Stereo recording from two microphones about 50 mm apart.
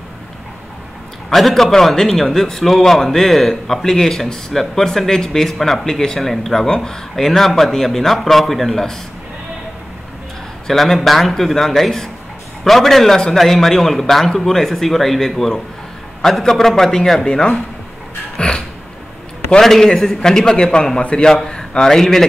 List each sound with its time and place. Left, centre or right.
1.3 s a man's voice: centre
10.7 s a man's voice: centre
19.6 s a man's voice: centre
21.3 s a man's voice: centre